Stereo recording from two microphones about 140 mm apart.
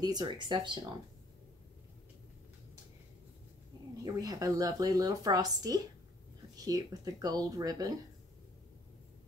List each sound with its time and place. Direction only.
0.0 s speech: 30° right (ahead or behind)
4.0 s speech: 25° right (ahead or behind)